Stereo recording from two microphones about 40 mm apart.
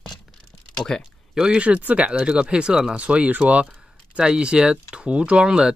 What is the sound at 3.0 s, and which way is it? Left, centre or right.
Speech, right.